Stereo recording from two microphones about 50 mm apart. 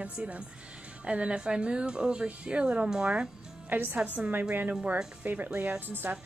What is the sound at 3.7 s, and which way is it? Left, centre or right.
A woman's voice, right.